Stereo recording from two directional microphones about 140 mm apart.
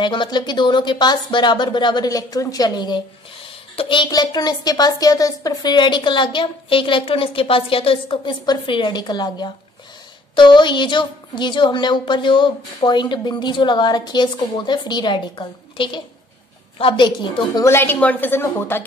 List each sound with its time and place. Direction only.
0.0 s a woman's voice: 35° left (ahead or behind)
17.6 s a woman's voice: 15° left (ahead or behind)